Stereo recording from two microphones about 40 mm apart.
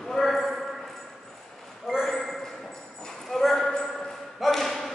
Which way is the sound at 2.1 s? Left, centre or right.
Centre.